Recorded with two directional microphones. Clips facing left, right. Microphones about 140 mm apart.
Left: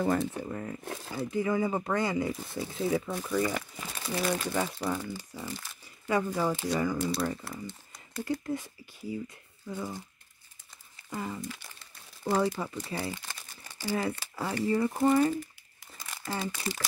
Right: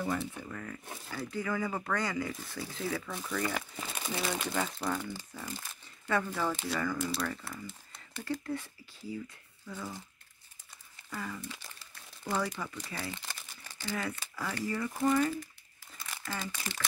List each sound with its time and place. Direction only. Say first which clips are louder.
0.0 s speech: left 6 dB; 50° left (ahead or behind)
0.3 s speech: left 6 dB; 30° left (ahead or behind); by 3.5 s 10° left (ahead or behind)
3.5 s speech: left 1 dB; centre (ahead or behind); by 7.0 s 15° left (ahead or behind)
8.2 s speech: left 4 dB; 15° left (ahead or behind)
11.1 s speech: left 4 dB; 25° left (ahead or behind)